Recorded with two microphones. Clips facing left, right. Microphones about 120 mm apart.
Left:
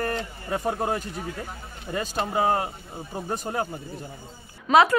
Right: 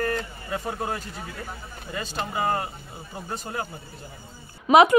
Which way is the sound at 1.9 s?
35° left (ahead or behind).